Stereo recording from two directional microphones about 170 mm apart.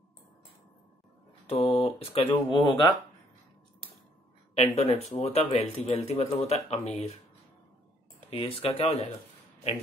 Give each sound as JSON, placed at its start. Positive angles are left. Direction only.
{"t": 1.5, "sound": "speech", "side_deg": 35}
{"t": 4.6, "sound": "speech", "side_deg": 40}
{"t": 8.3, "sound": "speech", "side_deg": 35}